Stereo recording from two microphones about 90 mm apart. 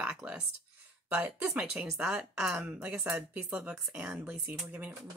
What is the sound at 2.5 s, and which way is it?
Speech, 20° right (ahead or behind).